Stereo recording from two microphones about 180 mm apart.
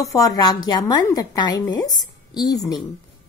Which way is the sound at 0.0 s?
20° left (ahead or behind).